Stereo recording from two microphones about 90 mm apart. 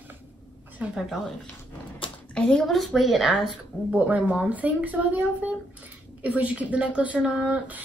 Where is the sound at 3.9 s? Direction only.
15° right (ahead or behind).